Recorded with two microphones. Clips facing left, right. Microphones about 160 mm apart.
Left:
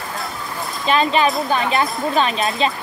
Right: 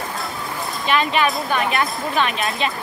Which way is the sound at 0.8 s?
30° left (ahead or behind).